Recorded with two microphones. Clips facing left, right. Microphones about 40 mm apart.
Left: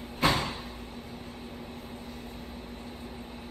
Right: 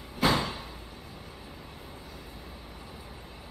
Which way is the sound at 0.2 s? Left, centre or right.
Left.